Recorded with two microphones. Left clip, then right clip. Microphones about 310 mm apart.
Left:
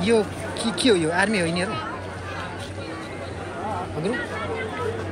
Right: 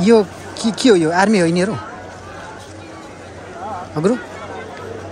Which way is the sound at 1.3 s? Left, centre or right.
Right.